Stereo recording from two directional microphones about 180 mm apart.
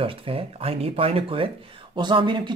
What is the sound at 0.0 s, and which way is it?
Speech, 30° right (ahead or behind).